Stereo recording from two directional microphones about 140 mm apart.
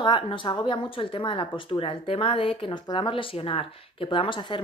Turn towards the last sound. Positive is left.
turn(degrees=35)  # may be behind; listen again after turning